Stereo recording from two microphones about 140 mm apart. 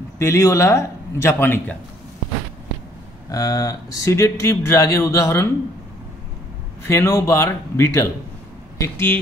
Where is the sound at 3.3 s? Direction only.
25° left (ahead or behind).